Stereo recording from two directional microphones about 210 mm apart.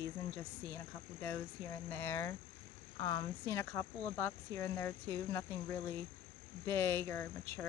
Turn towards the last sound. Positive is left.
turn(degrees=10)  # may be behind; listen again after turning